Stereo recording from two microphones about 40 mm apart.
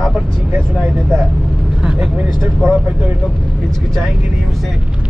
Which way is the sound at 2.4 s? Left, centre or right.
Centre.